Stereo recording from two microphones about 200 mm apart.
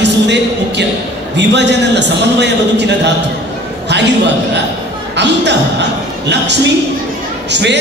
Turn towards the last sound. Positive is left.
turn(degrees=-60)  # may be behind; listen again after turning